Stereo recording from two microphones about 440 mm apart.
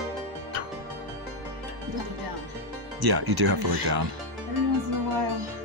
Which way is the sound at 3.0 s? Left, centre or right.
Right.